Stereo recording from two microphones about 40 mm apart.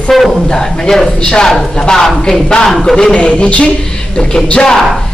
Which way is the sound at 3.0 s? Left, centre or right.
Left.